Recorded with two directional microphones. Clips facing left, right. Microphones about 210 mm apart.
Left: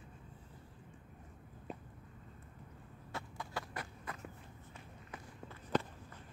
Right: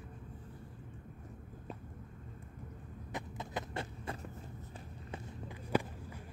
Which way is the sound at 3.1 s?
20° right (ahead or behind).